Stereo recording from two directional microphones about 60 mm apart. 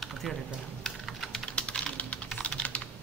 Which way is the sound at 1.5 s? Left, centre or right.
Centre.